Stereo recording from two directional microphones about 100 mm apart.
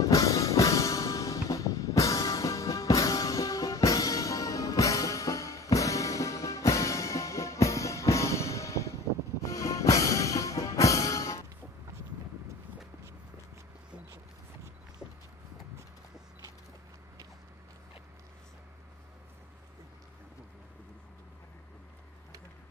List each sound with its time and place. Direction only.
0.0 s music: 35° left (ahead or behind)